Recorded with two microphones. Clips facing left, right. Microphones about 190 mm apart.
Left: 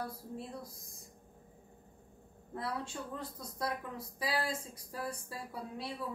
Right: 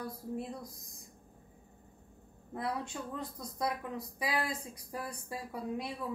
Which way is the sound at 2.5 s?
20° right (ahead or behind).